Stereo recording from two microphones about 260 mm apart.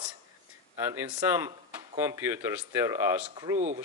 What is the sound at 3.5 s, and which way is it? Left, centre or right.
Speech, right.